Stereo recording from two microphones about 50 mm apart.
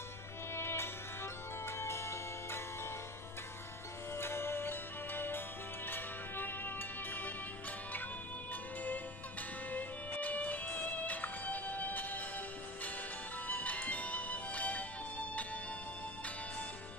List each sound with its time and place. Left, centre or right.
0.6 s music: left
4.2 s music: left
9.7 s music: left
13.5 s music: left